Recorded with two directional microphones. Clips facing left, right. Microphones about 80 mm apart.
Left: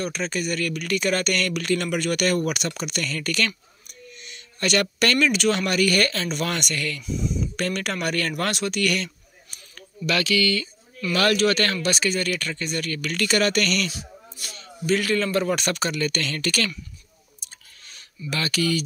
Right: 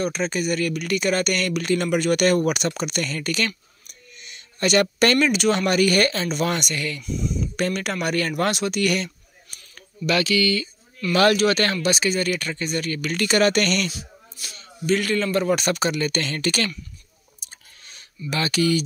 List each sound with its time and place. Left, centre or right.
0.0 s speech: centre
9.8 s speech: centre
11.3 s speech: centre; by 13.9 s right
14.9 s speech: centre; by 16.7 s right
17.4 s a sound: right